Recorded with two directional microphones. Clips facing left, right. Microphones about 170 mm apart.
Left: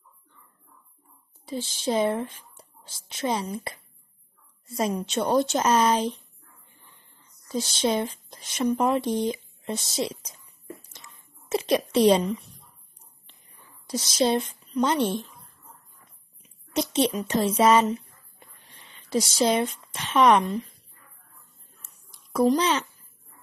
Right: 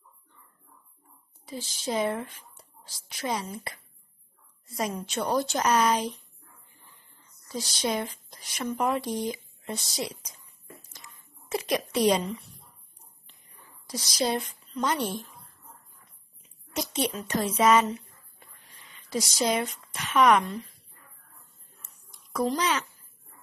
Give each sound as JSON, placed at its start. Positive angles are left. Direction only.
{"t": 1.4, "sound": "speech", "side_deg": 30}
{"t": 7.4, "sound": "speech", "side_deg": 25}
{"t": 10.9, "sound": "a sound", "side_deg": 25}
{"t": 13.8, "sound": "a woman's voice", "side_deg": 25}
{"t": 16.7, "sound": "speech", "side_deg": 25}
{"t": 22.6, "sound": "speech", "side_deg": 30}